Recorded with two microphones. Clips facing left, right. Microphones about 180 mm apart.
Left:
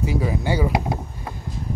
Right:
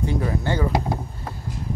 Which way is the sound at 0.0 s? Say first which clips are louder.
Left 1 dB; 5° left (ahead or behind).